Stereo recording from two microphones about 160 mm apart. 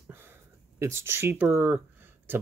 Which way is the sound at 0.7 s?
15° right (ahead or behind).